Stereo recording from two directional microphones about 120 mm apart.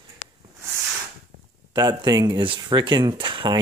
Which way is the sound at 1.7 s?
35° right (ahead or behind).